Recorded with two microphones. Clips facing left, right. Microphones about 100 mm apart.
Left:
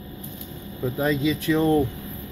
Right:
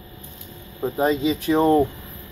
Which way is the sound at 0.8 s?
35° right (ahead or behind).